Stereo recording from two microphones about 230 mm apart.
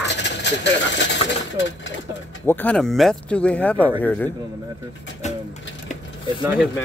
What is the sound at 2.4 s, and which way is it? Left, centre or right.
A man's voice, centre.